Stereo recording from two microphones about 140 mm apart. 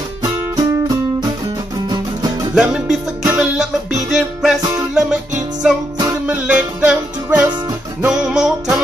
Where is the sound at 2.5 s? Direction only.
5° right (ahead or behind).